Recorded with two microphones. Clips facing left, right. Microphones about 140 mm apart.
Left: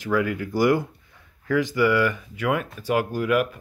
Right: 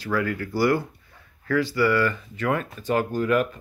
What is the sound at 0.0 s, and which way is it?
Speech, 15° left (ahead or behind).